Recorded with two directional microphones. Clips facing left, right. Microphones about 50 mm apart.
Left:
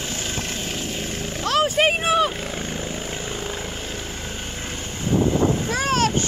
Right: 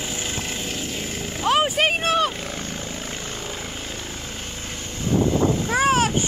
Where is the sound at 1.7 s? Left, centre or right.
Centre.